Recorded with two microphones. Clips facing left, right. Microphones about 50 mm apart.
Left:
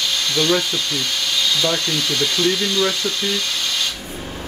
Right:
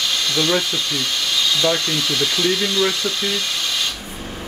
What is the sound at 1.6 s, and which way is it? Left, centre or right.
Speech, centre.